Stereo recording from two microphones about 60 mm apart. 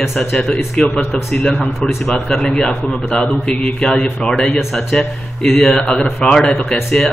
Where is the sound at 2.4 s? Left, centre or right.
Centre.